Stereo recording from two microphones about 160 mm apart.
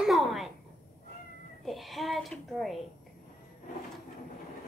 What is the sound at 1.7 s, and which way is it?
Speech, centre (ahead or behind).